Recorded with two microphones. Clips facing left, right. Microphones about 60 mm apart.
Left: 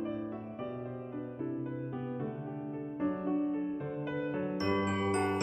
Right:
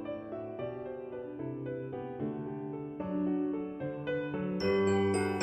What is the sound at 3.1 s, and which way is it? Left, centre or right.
Music, centre.